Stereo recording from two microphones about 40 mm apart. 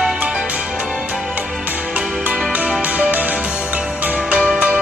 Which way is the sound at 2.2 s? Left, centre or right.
Right.